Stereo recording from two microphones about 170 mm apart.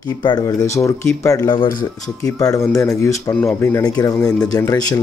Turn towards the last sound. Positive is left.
turn(degrees=20)  # may be behind; listen again after turning